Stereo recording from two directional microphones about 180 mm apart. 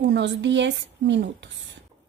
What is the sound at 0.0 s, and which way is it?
Speech, 75° right (ahead or behind).